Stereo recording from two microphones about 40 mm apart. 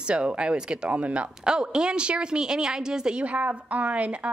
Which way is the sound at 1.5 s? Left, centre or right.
Right.